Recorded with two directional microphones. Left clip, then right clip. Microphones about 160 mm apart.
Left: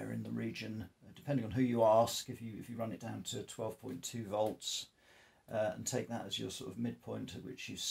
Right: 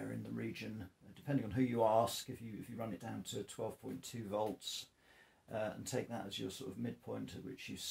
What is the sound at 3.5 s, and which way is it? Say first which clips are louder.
Speech: left 2 dB; 40° left (ahead or behind).